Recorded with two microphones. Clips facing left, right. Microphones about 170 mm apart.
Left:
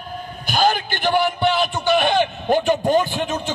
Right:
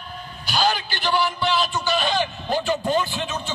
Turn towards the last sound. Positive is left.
turn(degrees=50)  # may be behind; listen again after turning